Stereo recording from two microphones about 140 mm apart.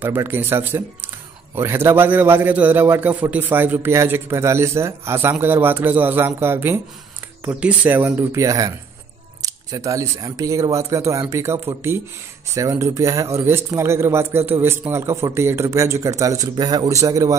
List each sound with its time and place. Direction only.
0.0 s a man's voice: 15° right (ahead or behind)